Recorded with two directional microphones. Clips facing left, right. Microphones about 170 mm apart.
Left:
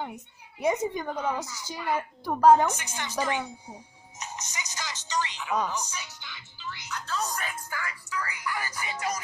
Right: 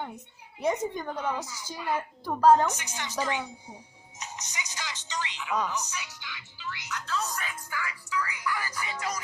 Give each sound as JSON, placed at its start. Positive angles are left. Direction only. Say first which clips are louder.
{"t": 0.6, "sound": "a woman's voice", "louder": "left 2 dB", "side_deg": 10}
{"t": 2.7, "sound": "speech", "louder": "left 2 dB", "side_deg": 50}
{"t": 5.7, "sound": "speech", "louder": "even", "side_deg": 30}
{"t": 8.5, "sound": "speech", "louder": "right 1 dB", "side_deg": 25}